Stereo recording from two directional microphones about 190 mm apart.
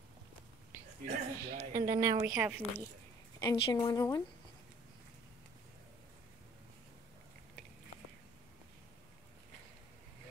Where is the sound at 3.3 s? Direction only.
20° left (ahead or behind).